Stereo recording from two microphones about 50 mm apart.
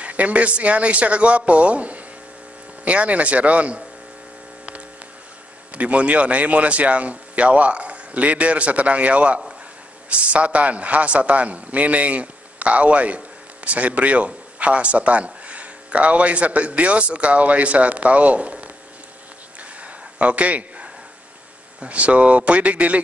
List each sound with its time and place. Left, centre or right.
0.0 s a man's voice: right
5.8 s a man's voice: right
19.8 s a sound: right
21.8 s a man's voice: right